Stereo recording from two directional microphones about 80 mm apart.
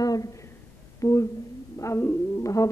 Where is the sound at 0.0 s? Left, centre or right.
Left.